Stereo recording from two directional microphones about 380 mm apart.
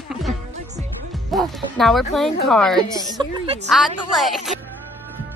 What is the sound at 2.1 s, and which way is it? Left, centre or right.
A woman's voice, centre.